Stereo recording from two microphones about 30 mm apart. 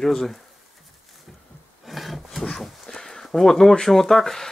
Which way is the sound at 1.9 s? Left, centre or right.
Centre.